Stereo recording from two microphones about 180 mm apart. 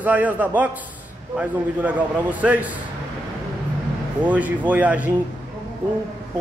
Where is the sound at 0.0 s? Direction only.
10° right (ahead or behind).